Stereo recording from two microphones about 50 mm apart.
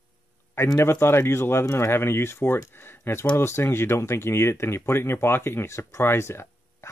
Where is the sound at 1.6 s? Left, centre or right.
Left.